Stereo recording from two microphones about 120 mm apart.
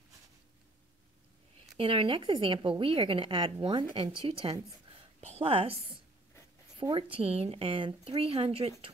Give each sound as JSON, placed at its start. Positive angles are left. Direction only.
{"t": 1.8, "sound": "a woman's voice", "side_deg": -50}